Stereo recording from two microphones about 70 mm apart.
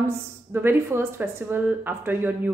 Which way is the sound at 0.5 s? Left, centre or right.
Right.